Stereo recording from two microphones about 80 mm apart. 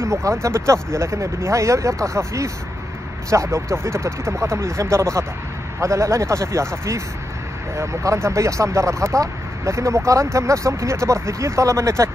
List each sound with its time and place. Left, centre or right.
0.0 s speech: right
7.7 s speech: right